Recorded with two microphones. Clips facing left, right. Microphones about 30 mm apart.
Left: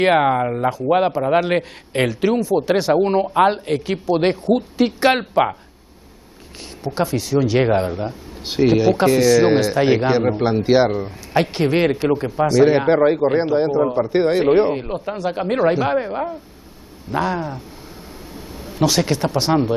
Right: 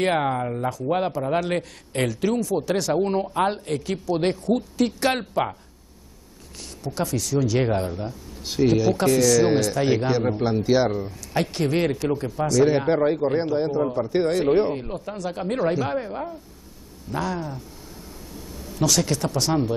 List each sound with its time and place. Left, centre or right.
0.0 s speech: left
6.8 s speech: left
18.7 s speech: left